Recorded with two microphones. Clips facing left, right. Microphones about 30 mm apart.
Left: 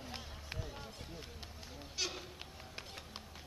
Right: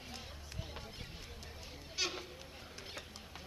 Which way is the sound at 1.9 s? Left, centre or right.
Centre.